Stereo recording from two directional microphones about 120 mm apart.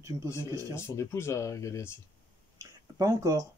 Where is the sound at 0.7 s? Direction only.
25° left (ahead or behind).